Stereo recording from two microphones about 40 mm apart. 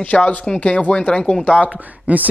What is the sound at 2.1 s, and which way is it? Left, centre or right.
Speech, right.